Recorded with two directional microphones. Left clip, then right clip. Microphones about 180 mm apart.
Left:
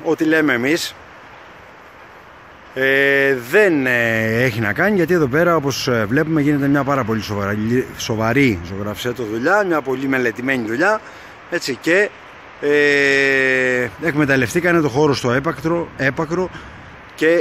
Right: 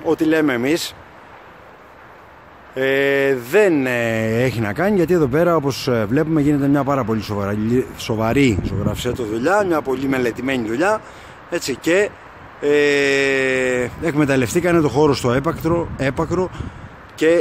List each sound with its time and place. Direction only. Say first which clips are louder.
0.0 s speech: left 1 dB; 5° right (ahead or behind)
2.7 s speech: left 2 dB; 5° right (ahead or behind)